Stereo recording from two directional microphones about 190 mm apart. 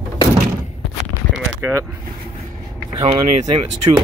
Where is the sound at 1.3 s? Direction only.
15° right (ahead or behind).